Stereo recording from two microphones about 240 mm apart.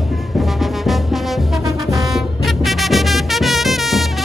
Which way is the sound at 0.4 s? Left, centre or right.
Centre.